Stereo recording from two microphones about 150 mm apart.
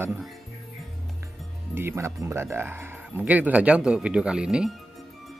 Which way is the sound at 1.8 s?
15° right (ahead or behind).